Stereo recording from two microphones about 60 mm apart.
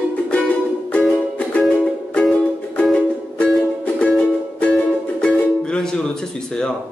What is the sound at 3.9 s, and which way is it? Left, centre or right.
Music, centre.